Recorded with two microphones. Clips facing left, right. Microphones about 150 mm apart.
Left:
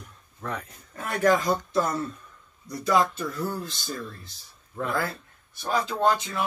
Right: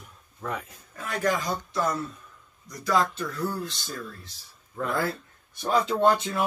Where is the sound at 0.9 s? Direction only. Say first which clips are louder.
Left 5 dB; 55° left (ahead or behind).